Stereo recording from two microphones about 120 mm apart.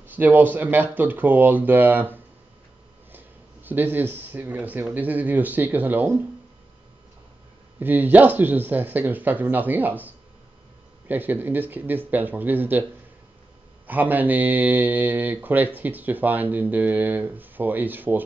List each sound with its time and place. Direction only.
0.0 s speech: 15° right (ahead or behind)
7.8 s speech: 15° right (ahead or behind)
13.8 s speech: 15° right (ahead or behind)